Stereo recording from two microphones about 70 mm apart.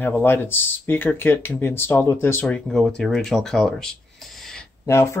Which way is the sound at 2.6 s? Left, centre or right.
Centre.